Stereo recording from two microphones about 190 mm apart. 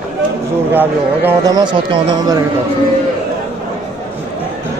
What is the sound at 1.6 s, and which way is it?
Speech, 25° right (ahead or behind).